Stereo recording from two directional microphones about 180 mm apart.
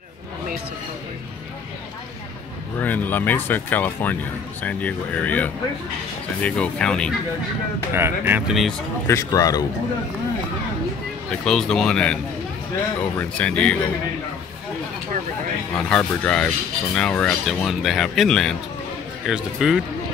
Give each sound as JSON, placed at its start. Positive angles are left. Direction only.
{"t": 2.8, "sound": "speech", "side_deg": 10}
{"t": 7.9, "sound": "speech", "side_deg": -10}
{"t": 9.0, "sound": "speech", "side_deg": 15}
{"t": 11.4, "sound": "speech", "side_deg": 5}
{"t": 13.2, "sound": "speech", "side_deg": 5}
{"t": 15.7, "sound": "speech", "side_deg": 5}